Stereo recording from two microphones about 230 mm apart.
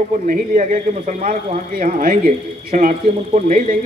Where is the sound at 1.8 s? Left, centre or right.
Right.